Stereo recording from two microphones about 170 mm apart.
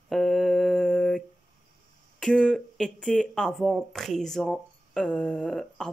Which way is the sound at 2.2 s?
5° left (ahead or behind).